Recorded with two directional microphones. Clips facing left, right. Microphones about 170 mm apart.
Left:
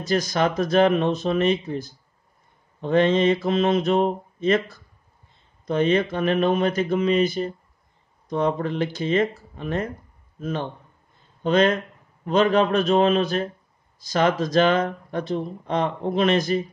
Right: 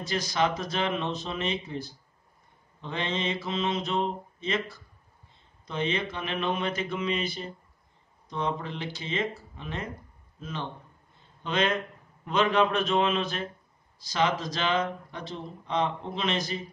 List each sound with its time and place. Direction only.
0.0 s a man's voice: 45° left (ahead or behind)